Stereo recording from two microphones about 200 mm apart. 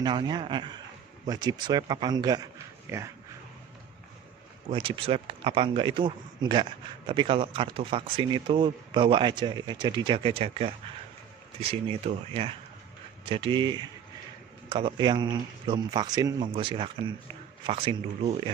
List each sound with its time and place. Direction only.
0.0 s speech: 20° right (ahead or behind)
4.6 s speech: 25° right (ahead or behind)